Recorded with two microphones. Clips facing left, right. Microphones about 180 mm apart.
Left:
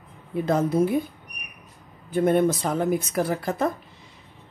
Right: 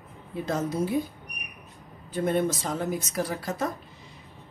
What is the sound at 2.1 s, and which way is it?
Speech, 55° left (ahead or behind).